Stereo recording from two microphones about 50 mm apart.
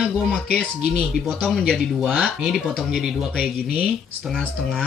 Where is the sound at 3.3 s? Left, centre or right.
Centre.